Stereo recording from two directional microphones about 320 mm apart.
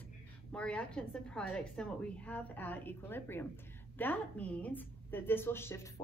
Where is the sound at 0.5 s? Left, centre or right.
Centre.